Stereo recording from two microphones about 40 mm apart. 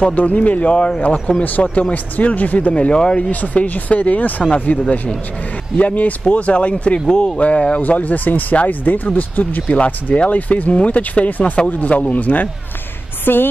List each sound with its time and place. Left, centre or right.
0.1 s speech: left
1.0 s speech: left
1.6 s speech: left
2.7 s speech: left
3.2 s speech: left
7.8 s speech: left
9.7 s speech: left
13.2 s speech: left